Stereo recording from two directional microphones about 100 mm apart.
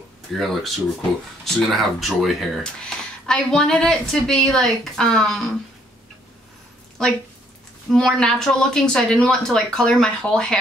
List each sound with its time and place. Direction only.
0.3 s speech: centre (ahead or behind)
7.0 s speech: 5° left (ahead or behind)